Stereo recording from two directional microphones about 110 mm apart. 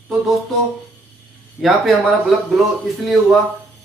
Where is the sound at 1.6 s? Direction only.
Centre (ahead or behind).